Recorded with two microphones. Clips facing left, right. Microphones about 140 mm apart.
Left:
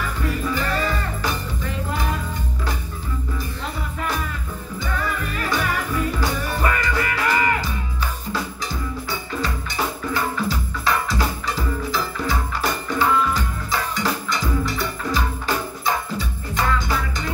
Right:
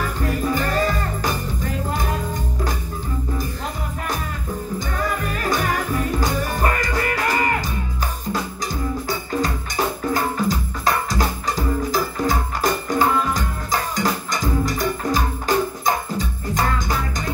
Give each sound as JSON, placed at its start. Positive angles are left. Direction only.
{"t": 0.0, "sound": "music", "side_deg": -40}
{"t": 4.7, "sound": "music", "side_deg": -40}
{"t": 10.0, "sound": "music", "side_deg": -40}